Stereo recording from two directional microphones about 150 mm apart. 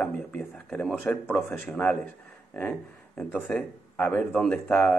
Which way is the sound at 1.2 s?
15° left (ahead or behind).